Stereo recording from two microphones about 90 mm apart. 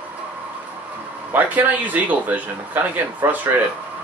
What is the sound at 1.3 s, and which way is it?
Speech, 20° right (ahead or behind).